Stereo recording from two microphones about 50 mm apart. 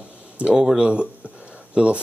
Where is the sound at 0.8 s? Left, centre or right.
Right.